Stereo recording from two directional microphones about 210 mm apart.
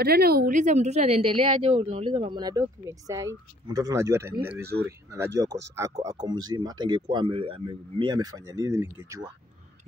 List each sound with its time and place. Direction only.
0.0 s speech: 50° right (ahead or behind); by 9.2 s 10° right (ahead or behind)